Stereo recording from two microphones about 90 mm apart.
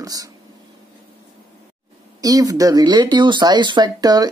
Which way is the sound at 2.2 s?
40° right (ahead or behind).